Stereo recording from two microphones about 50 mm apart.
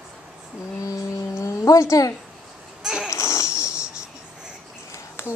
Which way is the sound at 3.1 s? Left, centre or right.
Left.